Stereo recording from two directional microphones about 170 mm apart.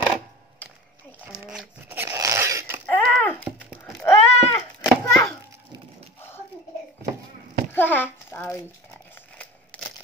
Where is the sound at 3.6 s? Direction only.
5° right (ahead or behind).